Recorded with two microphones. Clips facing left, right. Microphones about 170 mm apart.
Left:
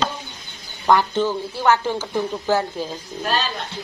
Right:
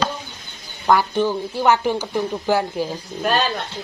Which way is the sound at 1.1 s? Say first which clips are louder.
Right 2 dB; 15° right (ahead or behind).